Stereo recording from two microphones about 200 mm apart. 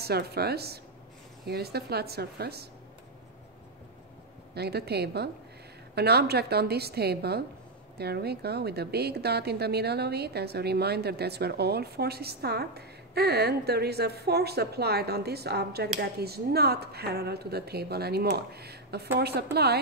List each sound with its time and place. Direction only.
0.0 s a woman's voice: 55° right (ahead or behind)
4.6 s a woman's voice: 55° right (ahead or behind)